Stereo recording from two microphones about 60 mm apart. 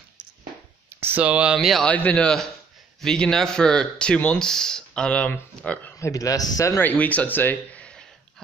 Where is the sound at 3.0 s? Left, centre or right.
Centre.